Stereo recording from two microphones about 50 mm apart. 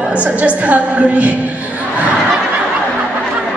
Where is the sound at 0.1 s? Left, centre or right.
Right.